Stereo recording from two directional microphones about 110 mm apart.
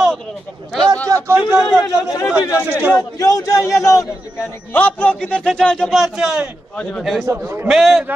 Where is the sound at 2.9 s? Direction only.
30° left (ahead or behind).